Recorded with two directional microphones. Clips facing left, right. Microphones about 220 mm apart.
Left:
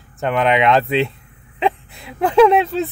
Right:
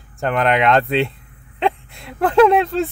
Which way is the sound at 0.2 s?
Centre (ahead or behind).